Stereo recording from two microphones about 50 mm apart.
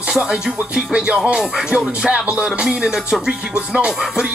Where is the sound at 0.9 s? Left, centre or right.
Centre.